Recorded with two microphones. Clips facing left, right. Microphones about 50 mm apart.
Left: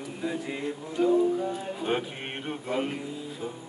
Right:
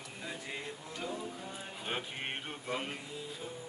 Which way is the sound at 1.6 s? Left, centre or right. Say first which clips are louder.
Left 10 dB; centre.